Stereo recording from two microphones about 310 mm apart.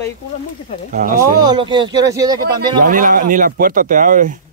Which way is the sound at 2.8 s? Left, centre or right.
Right.